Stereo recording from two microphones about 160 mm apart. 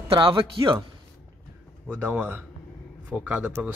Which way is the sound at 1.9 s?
10° right (ahead or behind).